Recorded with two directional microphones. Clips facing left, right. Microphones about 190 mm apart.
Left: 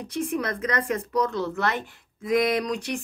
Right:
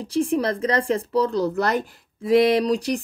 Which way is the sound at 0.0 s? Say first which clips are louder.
Right 6 dB; 30° right (ahead or behind).